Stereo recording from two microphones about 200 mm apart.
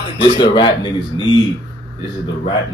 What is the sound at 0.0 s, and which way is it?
A man's voice, 25° left (ahead or behind).